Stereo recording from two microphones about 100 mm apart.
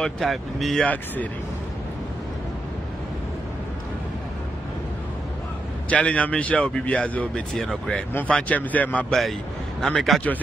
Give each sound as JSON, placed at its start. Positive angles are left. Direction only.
{"t": 0.0, "sound": "speech", "side_deg": 0}
{"t": 5.9, "sound": "speech", "side_deg": 10}
{"t": 8.1, "sound": "speech", "side_deg": 20}